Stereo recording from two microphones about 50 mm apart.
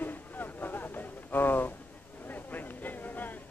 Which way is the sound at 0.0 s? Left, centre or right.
Left.